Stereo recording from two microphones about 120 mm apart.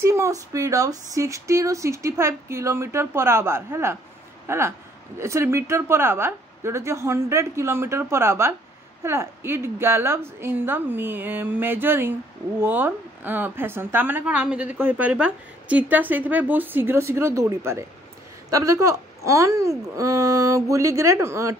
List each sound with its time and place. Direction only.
0.0 s a woman's voice: 25° right (ahead or behind)